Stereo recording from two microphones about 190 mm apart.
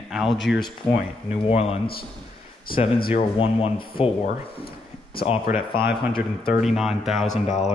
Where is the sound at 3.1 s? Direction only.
30° left (ahead or behind).